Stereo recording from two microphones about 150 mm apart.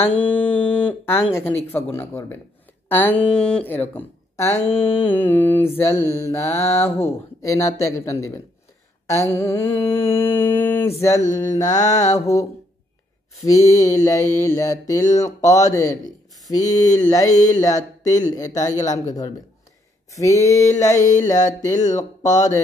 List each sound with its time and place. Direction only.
0.0 s mantra: 10° left (ahead or behind)
1.3 s speech: 15° left (ahead or behind)
4.6 s mantra: 40° left (ahead or behind)
5.0 s speech: 10° left (ahead or behind)
6.2 s music: 20° left (ahead or behind)
9.0 s music: 20° left (ahead or behind)
9.8 s mantra: 40° left (ahead or behind)
10.1 s speech: 15° left (ahead or behind)
11.0 s music: 20° left (ahead or behind)
13.5 s music: 20° left (ahead or behind)
21.9 s speech: 55° left (ahead or behind)